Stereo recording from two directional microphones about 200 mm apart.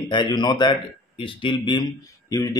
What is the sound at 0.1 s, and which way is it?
Speech, 25° left (ahead or behind).